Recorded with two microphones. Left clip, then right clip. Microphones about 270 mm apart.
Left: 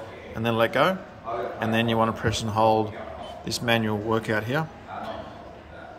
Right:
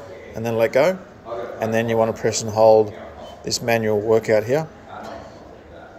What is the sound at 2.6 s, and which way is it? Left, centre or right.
Speech, left.